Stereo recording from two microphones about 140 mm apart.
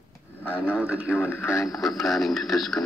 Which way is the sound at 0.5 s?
10° right (ahead or behind).